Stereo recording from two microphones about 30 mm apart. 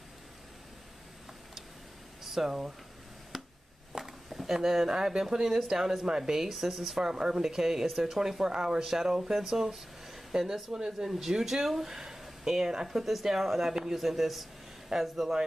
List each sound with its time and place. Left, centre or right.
2.2 s speech: centre
3.3 s a sound: centre
3.9 s speech: centre
12.8 s speech: centre
13.9 s speech: centre